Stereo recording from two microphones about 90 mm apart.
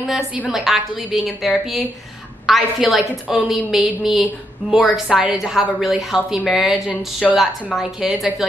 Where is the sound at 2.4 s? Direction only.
Centre (ahead or behind).